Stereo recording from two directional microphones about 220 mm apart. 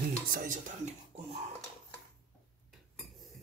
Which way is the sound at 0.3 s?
35° right (ahead or behind).